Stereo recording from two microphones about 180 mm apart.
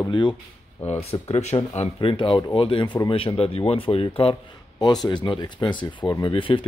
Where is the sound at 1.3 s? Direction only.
35° left (ahead or behind).